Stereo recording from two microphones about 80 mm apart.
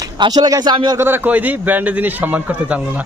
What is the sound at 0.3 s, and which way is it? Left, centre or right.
Speech, right.